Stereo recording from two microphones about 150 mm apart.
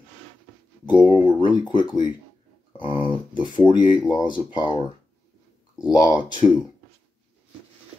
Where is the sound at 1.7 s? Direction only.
30° left (ahead or behind).